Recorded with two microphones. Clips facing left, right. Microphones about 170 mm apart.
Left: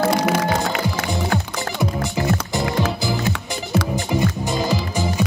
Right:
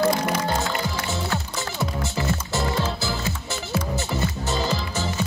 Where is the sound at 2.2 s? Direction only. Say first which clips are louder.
Left 5 dB; 50° left (ahead or behind).